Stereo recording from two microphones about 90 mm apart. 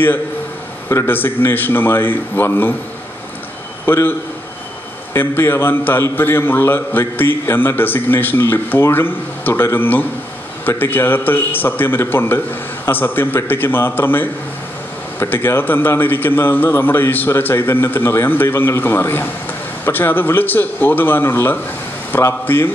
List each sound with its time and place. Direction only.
0.8 s a man's voice: 25° left (ahead or behind)
3.8 s a man's voice: 25° left (ahead or behind)
5.1 s a man's voice: 25° left (ahead or behind)